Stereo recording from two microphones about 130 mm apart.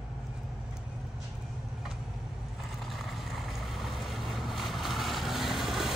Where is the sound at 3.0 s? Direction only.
Centre (ahead or behind).